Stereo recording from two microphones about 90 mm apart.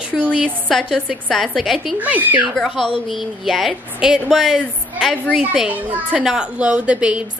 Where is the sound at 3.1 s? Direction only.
Centre (ahead or behind).